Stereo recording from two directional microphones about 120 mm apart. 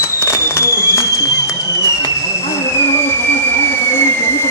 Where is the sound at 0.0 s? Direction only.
20° left (ahead or behind).